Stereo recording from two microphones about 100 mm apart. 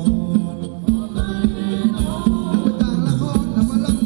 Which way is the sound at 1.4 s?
10° right (ahead or behind).